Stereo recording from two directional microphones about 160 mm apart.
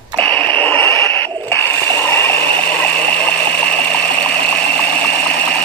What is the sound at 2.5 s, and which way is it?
Stream, 35° right (ahead or behind).